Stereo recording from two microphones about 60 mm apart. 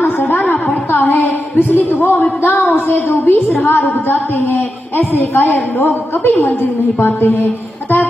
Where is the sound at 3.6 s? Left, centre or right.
Left.